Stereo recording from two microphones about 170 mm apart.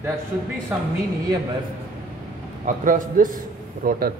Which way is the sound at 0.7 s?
5° right (ahead or behind).